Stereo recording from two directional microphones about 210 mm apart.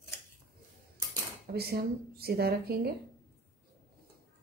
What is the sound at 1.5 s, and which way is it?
A woman's voice, 50° right (ahead or behind).